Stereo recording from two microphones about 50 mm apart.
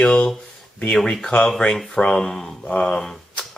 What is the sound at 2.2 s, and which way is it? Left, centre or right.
Speech, centre.